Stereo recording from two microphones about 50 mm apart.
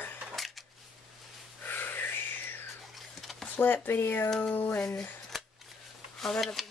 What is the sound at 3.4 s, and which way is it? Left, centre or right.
Speech, left.